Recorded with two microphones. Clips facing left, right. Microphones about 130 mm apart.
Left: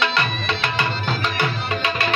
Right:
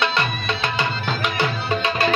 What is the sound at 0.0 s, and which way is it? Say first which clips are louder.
Music: even; 25° right (ahead or behind).